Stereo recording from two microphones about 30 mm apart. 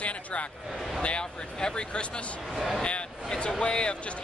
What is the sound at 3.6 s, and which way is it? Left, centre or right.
Speech, left.